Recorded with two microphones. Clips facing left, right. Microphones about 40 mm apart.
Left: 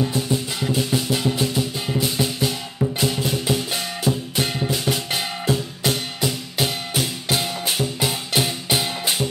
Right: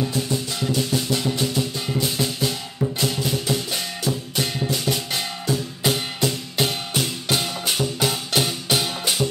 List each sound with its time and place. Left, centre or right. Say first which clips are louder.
0.0 s music: left 2 dB; centre
5.9 s music: right 1 dB; centre